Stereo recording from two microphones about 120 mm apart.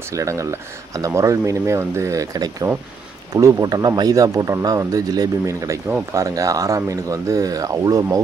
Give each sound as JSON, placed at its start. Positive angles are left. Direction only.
{"t": 0.1, "sound": "speech", "side_deg": -25}